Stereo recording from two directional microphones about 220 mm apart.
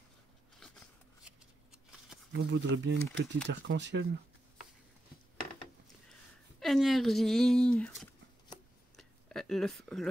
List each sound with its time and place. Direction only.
2.3 s speech: 55° right (ahead or behind)
6.6 s speech: centre (ahead or behind)
8.9 s a sound: centre (ahead or behind)